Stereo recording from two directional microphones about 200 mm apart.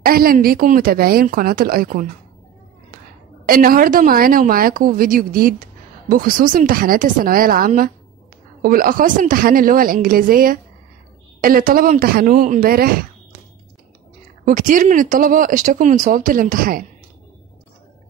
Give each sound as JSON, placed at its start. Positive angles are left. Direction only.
{"t": 0.0, "sound": "a woman's voice", "side_deg": -45}
{"t": 3.4, "sound": "a woman's voice", "side_deg": -45}
{"t": 14.4, "sound": "a woman's voice", "side_deg": -40}